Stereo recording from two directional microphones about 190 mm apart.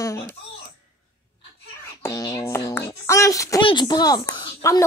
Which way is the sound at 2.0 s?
15° left (ahead or behind).